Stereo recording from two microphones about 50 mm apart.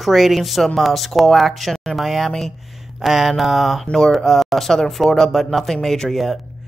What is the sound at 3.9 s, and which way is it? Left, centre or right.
A man's voice, centre.